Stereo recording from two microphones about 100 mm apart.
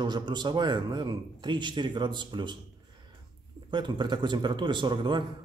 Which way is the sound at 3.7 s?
50° right (ahead or behind).